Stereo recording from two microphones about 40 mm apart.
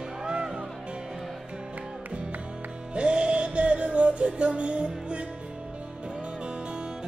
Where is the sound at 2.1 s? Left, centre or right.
Right.